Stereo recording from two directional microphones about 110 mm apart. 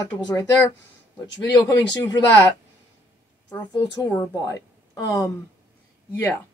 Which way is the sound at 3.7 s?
40° left (ahead or behind).